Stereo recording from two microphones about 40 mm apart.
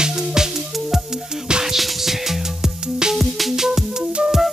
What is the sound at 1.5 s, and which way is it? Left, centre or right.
Music, centre.